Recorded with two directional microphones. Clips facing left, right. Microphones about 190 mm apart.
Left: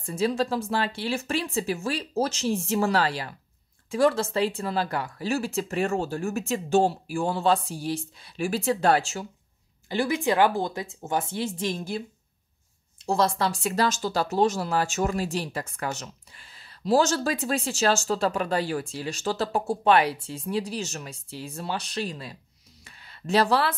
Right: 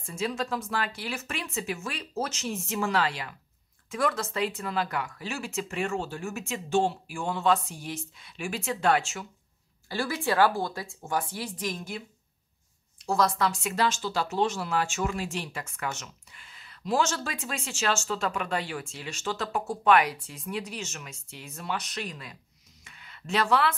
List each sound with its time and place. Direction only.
0.0 s speech: 35° left (ahead or behind)
9.8 s speech: 20° left (ahead or behind)
13.0 s speech: 25° left (ahead or behind)
22.8 s a sound: 35° left (ahead or behind)